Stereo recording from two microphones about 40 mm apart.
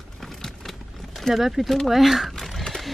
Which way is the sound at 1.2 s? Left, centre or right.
Centre.